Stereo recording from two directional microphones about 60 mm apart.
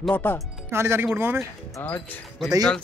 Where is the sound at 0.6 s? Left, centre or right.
Right.